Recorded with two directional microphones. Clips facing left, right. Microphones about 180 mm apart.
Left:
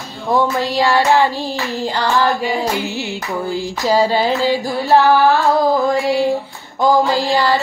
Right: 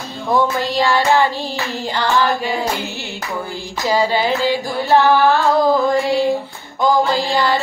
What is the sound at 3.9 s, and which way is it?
Music, 35° left (ahead or behind).